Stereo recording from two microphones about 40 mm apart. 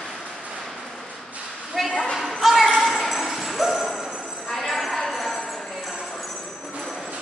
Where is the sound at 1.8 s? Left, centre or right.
Centre.